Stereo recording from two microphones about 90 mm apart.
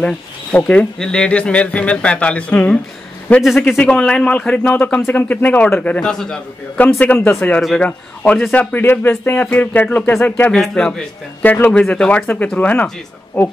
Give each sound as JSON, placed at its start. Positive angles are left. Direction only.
{"t": 0.0, "sound": "speech", "side_deg": 15}
{"t": 6.8, "sound": "speech", "side_deg": 20}
{"t": 10.5, "sound": "speech", "side_deg": 5}